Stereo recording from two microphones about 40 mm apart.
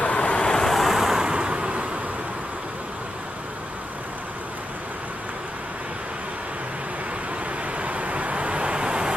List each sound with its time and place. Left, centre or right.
0.0 s vehicle: left
0.7 s vehicle: centre
1.2 s vehicle: right
7.8 s vehicle: right